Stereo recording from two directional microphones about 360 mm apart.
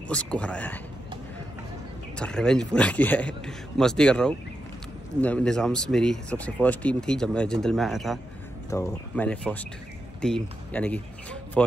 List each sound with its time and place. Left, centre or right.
0.1 s speech: centre
2.1 s speech: centre